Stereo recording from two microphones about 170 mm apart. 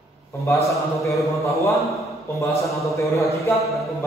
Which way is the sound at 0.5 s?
15° left (ahead or behind).